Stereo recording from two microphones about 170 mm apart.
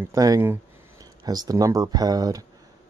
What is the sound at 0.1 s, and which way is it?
Speech, 20° right (ahead or behind).